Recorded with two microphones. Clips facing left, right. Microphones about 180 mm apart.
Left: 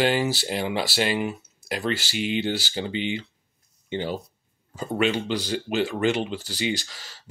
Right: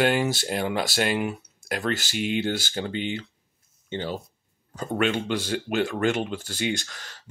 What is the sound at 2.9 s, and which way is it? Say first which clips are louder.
Speech: left 2 dB; 45° right (ahead or behind).